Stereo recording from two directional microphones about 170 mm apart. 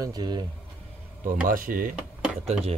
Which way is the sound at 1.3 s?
55° right (ahead or behind).